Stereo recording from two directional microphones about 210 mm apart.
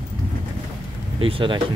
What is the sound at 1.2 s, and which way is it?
Speech, 25° right (ahead or behind).